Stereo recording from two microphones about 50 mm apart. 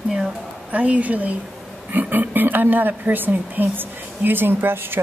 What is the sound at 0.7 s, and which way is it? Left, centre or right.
A woman's voice, right.